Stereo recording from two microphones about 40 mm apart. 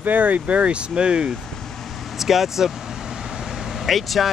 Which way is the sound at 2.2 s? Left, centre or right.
Centre.